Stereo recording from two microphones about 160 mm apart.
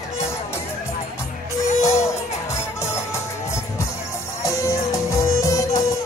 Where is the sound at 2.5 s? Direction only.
15° left (ahead or behind).